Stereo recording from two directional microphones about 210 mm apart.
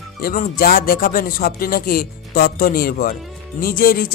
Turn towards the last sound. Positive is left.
turn(degrees=45)  # may be behind; listen again after turning